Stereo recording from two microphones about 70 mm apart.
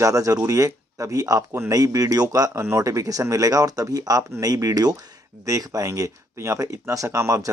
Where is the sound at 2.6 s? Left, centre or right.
Right.